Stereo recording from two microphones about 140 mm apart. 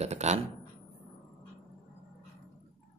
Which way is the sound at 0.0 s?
50° right (ahead or behind).